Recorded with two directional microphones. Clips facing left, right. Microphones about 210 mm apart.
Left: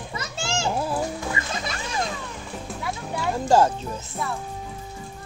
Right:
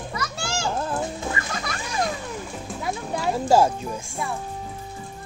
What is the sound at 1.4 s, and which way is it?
Music, 20° left (ahead or behind).